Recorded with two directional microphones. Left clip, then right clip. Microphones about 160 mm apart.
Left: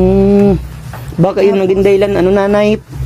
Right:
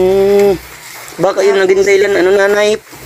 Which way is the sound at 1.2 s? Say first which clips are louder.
Right 1 dB; centre (ahead or behind).